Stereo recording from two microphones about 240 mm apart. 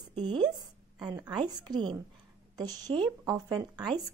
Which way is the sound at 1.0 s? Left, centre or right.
Centre.